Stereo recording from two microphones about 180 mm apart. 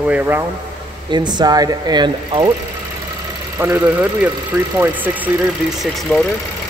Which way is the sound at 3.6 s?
10° right (ahead or behind).